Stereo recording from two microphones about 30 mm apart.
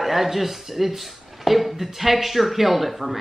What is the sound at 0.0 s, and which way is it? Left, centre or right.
Speech, centre.